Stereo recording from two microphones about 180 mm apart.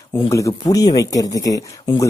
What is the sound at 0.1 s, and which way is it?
Speech, 15° left (ahead or behind).